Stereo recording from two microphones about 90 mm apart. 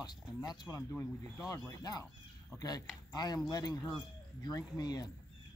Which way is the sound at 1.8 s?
45° left (ahead or behind).